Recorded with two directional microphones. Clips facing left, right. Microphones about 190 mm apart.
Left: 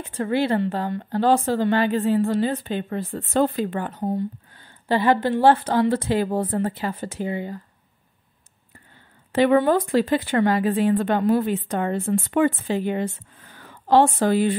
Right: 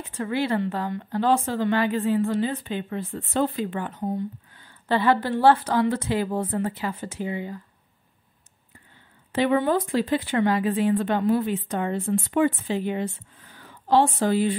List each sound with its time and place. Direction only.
0.2 s a woman's voice: 35° left (ahead or behind)
4.8 s a woman's voice: 15° left (ahead or behind); by 7.0 s 35° left (ahead or behind)
7.0 s speech: 50° left (ahead or behind)
9.3 s speech: 45° left (ahead or behind)